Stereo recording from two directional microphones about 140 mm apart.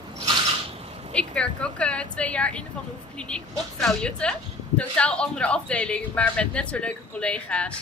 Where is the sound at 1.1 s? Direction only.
5° left (ahead or behind).